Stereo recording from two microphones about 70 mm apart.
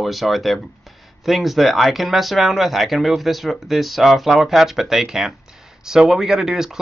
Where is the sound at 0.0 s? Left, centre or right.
Centre.